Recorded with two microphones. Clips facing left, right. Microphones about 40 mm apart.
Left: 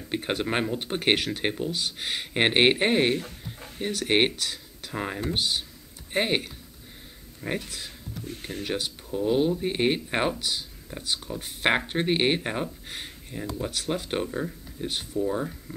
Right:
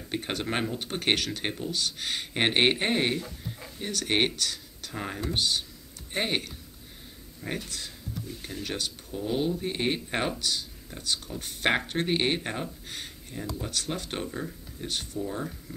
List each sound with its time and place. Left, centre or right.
0.1 s speech: centre
3.2 s chicken: left
3.8 s speech: centre
8.3 s speech: left
8.6 s speech: centre